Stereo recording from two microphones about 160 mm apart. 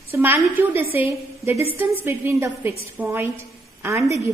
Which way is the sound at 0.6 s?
15° right (ahead or behind).